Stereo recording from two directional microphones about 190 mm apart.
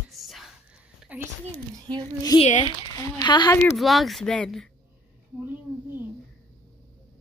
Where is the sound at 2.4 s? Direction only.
40° left (ahead or behind).